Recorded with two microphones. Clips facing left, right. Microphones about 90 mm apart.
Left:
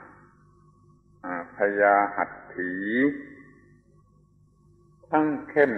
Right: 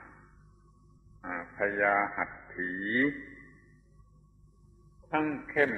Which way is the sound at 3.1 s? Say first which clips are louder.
Left 7 dB; 25° left (ahead or behind).